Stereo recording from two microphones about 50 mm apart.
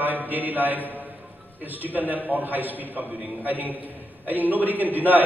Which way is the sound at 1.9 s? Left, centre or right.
Right.